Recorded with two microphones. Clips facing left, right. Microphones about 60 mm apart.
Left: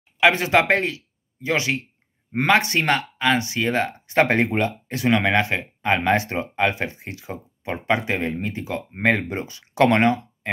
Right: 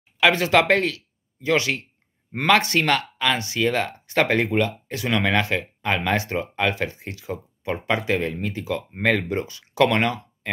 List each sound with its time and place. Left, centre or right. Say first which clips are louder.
0.2 s speech: even; left